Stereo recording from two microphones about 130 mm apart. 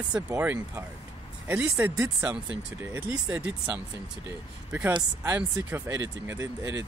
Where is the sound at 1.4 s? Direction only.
10° right (ahead or behind).